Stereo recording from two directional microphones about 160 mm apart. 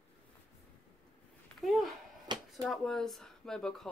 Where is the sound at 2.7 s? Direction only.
Centre (ahead or behind).